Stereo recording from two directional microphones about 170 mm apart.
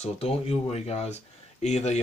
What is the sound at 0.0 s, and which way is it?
Speech, 40° left (ahead or behind).